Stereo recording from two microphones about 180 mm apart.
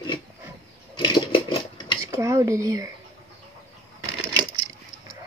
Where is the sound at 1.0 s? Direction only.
30° left (ahead or behind).